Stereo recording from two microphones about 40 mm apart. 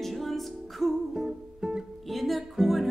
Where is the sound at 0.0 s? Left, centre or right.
Centre.